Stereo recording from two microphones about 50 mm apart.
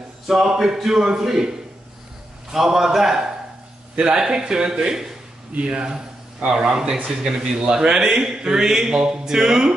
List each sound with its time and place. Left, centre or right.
0.5 s a man's voice: centre
2.5 s a man's voice: centre
5.5 s a man's voice: right